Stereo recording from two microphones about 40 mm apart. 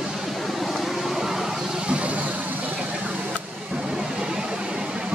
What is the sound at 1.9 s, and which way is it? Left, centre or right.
Vehicle, right.